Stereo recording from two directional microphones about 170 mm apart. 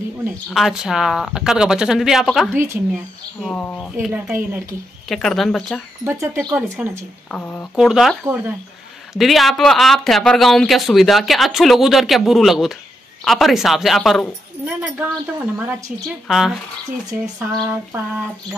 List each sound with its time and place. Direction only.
0.5 s speech: centre (ahead or behind)
2.5 s a woman's voice: 15° right (ahead or behind)
3.3 s speech: 5° left (ahead or behind)
3.9 s a woman's voice: 10° right (ahead or behind)
5.1 s speech: centre (ahead or behind)
6.0 s a woman's voice: 15° right (ahead or behind)
7.3 s speech: 10° left (ahead or behind)
7.7 s speech: 5° right (ahead or behind)
14.6 s a woman's voice: 10° right (ahead or behind)
17.4 s a woman's voice: 20° right (ahead or behind)